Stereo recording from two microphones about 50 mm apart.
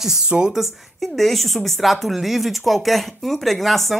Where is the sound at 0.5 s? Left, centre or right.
Centre.